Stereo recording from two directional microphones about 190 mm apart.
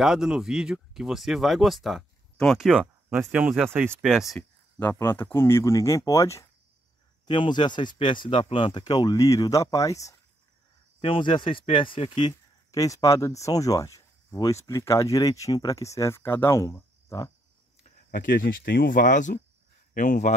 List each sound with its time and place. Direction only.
0.0 s speech: 5° right (ahead or behind); by 17.3 s 20° left (ahead or behind)
17.8 s speech: 45° left (ahead or behind)